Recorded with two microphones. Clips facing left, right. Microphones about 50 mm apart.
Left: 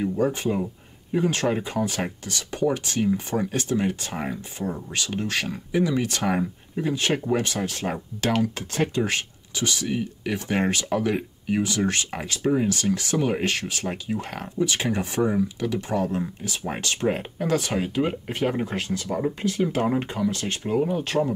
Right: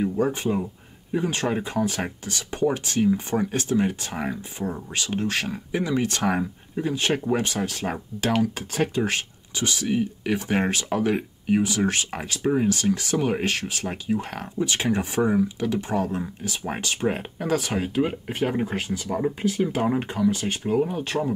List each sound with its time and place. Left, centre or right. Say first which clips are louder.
0.0 s speech: even; centre
5.7 s speech: left 2 dB; centre
6.0 s speech: right 1 dB; centre
20.6 s speech: even; centre